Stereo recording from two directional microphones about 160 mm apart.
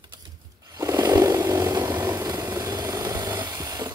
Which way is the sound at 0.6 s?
20° right (ahead or behind).